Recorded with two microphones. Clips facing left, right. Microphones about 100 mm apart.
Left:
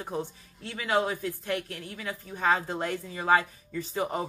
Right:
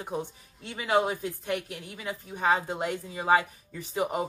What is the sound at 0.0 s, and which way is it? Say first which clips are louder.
A woman's voice: even; 15° right (ahead or behind).